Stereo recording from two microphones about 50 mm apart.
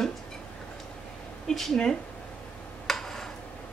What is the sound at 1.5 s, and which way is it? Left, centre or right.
Speech, centre.